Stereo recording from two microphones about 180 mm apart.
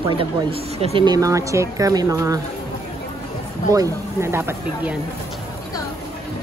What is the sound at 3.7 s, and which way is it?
A woman's voice, 15° right (ahead or behind).